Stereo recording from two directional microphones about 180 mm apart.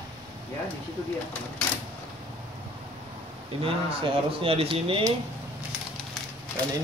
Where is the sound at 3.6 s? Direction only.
30° right (ahead or behind).